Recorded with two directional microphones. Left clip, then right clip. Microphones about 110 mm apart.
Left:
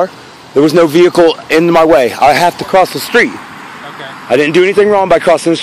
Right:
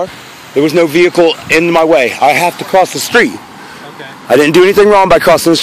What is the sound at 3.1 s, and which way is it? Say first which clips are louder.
Speech: right 1 dB; 15° right (ahead or behind).